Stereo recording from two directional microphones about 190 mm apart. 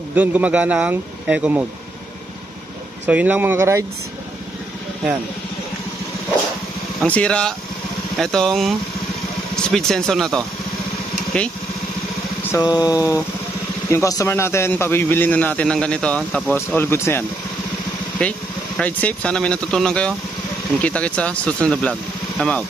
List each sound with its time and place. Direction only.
0.1 s a man's voice: 10° right (ahead or behind)
3.1 s a man's voice: 10° right (ahead or behind)
7.0 s speech: 5° left (ahead or behind)
12.4 s a man's voice: 20° left (ahead or behind)
18.2 s a man's voice: 5° left (ahead or behind)